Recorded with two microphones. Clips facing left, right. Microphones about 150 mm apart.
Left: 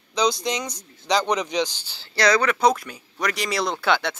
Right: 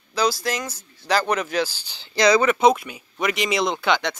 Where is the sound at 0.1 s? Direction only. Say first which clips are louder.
Even; 5° right (ahead or behind); by 2.7 s 20° right (ahead or behind).